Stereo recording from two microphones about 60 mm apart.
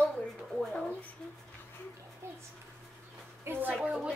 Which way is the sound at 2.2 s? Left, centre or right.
Right.